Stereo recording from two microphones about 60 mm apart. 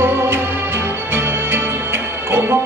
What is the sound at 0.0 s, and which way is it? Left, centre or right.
Music, right.